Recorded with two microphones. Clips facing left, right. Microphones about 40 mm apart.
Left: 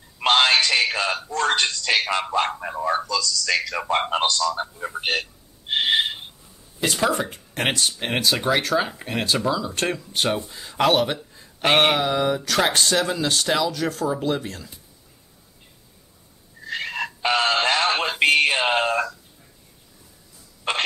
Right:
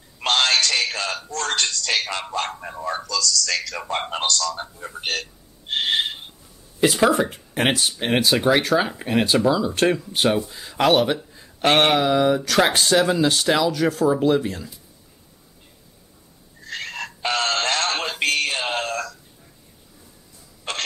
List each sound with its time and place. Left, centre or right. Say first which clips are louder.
0.2 s music: left 2 dB; centre
1.2 s speech: left 3 dB; centre
6.8 s speech: right 5 dB; centre
16.6 s synthetic singing: left 3 dB; centre
18.3 s a sound: left 5 dB; left
20.7 s throat clearing: left 5 dB; left